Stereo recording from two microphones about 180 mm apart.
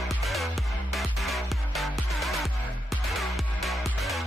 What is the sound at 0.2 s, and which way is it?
Music, centre (ahead or behind).